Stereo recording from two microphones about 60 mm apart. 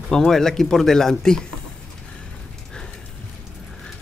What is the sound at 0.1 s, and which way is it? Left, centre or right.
Speech, centre.